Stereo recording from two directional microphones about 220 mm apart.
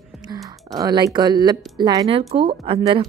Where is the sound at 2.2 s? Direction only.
30° right (ahead or behind).